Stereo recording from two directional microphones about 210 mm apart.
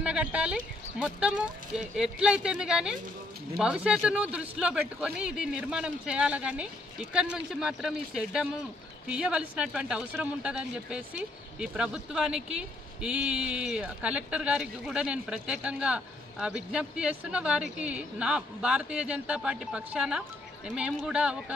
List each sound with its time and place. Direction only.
0.0 s speech: 5° right (ahead or behind)